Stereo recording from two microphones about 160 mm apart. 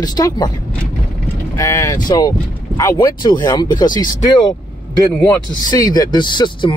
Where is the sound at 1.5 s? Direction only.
20° left (ahead or behind).